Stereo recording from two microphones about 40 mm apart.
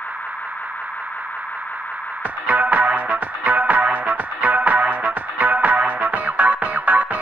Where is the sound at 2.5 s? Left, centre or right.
Right.